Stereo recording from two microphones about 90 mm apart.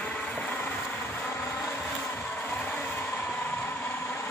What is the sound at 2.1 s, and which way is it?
Music, 15° left (ahead or behind).